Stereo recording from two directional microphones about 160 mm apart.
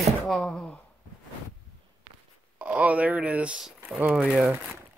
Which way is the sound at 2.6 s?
10° right (ahead or behind).